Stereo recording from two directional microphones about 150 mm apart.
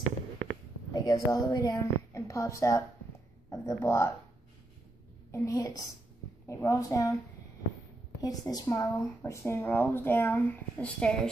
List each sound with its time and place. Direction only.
0.9 s a woman's voice: 25° left (ahead or behind)
5.3 s a woman's voice: 20° left (ahead or behind)
8.2 s speech: 25° left (ahead or behind); by 11.1 s 10° left (ahead or behind)